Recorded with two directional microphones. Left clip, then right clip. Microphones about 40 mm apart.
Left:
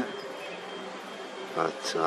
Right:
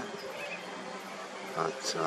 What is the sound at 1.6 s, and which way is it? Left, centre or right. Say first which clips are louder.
Speech: left 4 dB; left.